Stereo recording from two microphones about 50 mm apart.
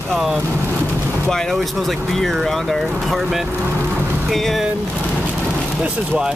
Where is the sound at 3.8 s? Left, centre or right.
Right.